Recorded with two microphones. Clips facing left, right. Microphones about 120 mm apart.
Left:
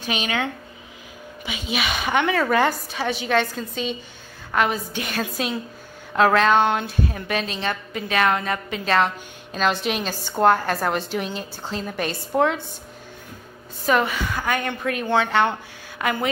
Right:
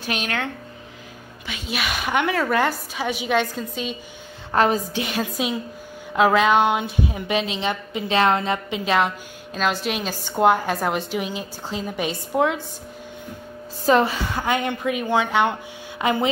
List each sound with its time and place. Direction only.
0.1 s a woman's voice: 5° left (ahead or behind)
4.5 s a woman's voice: 30° right (ahead or behind)
5.4 s a woman's voice: 10° right (ahead or behind)
13.8 s a woman's voice: 30° right (ahead or behind)
14.8 s a woman's voice: 10° right (ahead or behind)
16.0 s speech: 25° right (ahead or behind)